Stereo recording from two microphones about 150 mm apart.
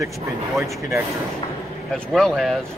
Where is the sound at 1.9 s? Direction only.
5° left (ahead or behind).